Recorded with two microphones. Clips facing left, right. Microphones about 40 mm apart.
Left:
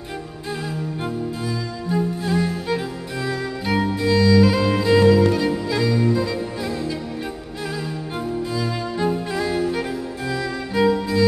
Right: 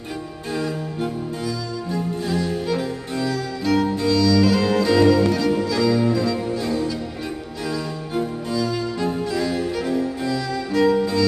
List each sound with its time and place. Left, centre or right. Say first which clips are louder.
0.5 s music: right 2 dB; centre